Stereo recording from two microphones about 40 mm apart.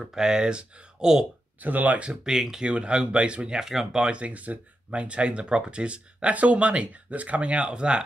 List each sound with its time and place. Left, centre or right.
0.0 s speech: centre
1.6 s speech: right
2.2 s speech: centre
2.6 s speech: right
3.5 s speech: centre
4.0 s speech: right
5.0 s speech: right